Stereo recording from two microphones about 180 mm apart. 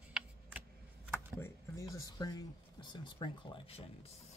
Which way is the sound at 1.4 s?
15° left (ahead or behind).